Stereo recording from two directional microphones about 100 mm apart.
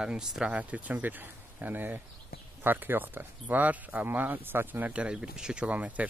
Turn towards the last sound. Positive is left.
turn(degrees=-15)  # may be behind; listen again after turning